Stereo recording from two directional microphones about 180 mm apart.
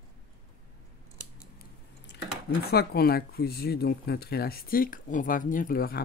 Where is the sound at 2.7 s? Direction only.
60° left (ahead or behind).